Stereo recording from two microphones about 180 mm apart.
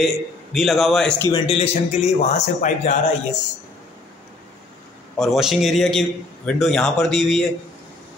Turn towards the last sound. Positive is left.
turn(degrees=0)  # may be behind; listen again after turning